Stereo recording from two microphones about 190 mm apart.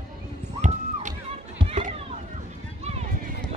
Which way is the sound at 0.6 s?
40° right (ahead or behind).